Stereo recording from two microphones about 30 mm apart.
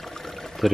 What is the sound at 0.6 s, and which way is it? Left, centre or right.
Speech, centre.